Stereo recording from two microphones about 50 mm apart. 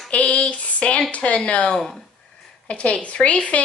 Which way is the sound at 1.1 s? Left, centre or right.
Left.